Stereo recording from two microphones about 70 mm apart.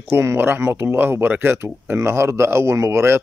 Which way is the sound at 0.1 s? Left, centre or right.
Right.